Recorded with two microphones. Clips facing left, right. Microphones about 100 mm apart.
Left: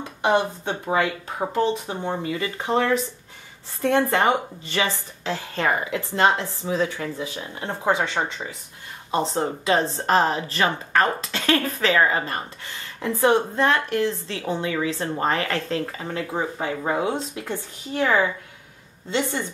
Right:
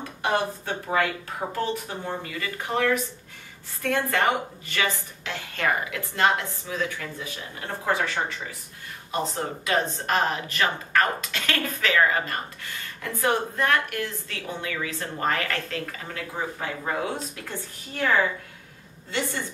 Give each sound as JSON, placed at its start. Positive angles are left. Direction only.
{"t": 0.2, "sound": "a woman's voice", "side_deg": 20}